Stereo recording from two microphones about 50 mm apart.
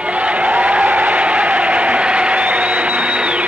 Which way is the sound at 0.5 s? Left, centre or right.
Right.